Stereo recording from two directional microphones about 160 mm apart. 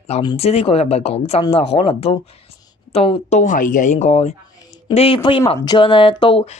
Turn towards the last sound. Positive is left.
turn(degrees=30)  # may be behind; listen again after turning